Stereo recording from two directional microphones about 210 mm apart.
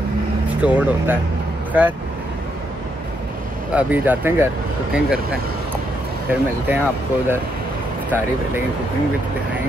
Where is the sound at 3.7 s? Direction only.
5° right (ahead or behind).